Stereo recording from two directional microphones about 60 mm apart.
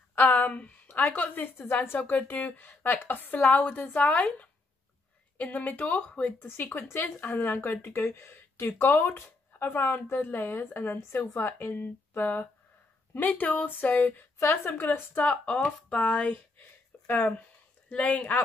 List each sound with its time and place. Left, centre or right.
0.1 s a woman's voice: left
6.4 s a woman's voice: left
12.1 s a sound: left
13.1 s a woman's voice: left
14.4 s a woman's voice: left